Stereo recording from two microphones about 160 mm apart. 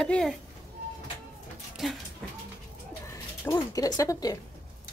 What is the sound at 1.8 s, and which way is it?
Dog, centre (ahead or behind).